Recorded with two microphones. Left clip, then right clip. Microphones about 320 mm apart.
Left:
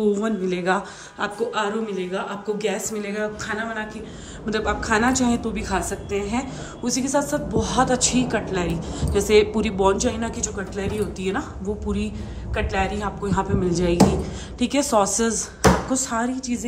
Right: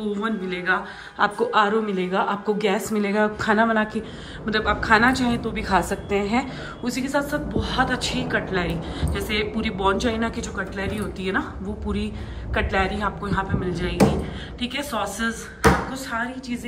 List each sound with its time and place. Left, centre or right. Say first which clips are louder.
0.0 s a woman's voice: left 5 dB; centre
1.2 s a woman's voice: right 5 dB; centre
4.5 s a woman's voice: right 3 dB; centre
12.5 s a woman's voice: right 1 dB; centre